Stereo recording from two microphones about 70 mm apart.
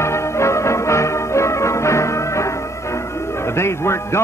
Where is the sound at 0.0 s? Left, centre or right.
Left.